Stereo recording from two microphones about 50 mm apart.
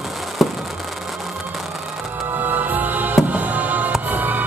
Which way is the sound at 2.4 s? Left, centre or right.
Right.